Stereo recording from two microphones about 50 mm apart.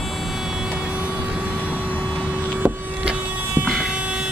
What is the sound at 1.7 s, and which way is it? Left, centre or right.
Vehicle, left.